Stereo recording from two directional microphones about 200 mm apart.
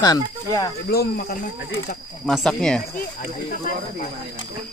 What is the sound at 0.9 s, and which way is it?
Speech, 50° left (ahead or behind).